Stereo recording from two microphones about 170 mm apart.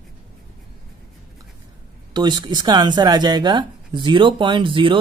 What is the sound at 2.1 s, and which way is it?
Speech, 25° right (ahead or behind).